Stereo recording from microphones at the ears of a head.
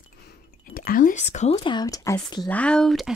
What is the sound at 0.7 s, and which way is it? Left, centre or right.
Speech, left.